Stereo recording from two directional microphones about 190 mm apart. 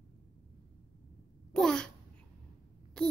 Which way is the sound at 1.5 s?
5° left (ahead or behind).